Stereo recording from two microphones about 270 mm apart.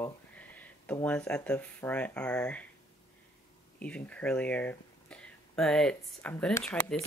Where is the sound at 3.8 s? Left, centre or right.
Centre.